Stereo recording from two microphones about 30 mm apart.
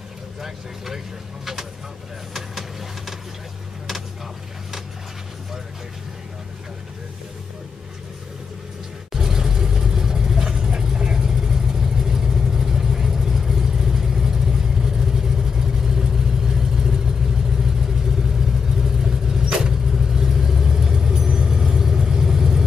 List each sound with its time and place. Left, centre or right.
0.4 s speech: centre
9.1 s vehicle: centre
19.9 s vehicle: centre